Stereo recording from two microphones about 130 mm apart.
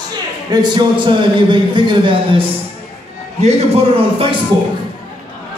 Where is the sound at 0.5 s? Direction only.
35° right (ahead or behind).